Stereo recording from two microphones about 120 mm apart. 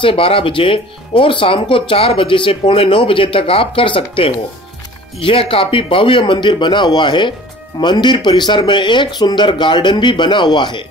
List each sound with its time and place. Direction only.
0.0 s speech: 50° left (ahead or behind)